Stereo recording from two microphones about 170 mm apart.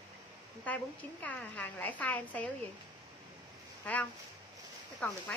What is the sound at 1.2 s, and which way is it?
A woman's voice, 10° left (ahead or behind).